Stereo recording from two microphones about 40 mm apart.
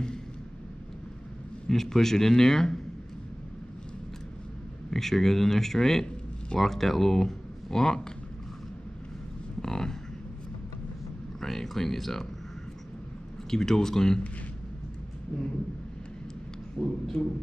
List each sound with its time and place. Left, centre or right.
1.7 s a man's voice: centre
4.9 s a man's voice: centre
9.6 s a sound: centre
11.4 s speech: centre
13.5 s a man's voice: centre
15.3 s a sound: centre
16.8 s a man's voice: centre